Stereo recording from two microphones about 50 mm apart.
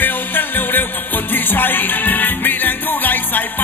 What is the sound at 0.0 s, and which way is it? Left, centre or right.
Music, left.